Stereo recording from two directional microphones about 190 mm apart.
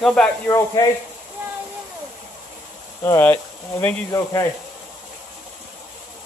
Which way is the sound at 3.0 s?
10° left (ahead or behind).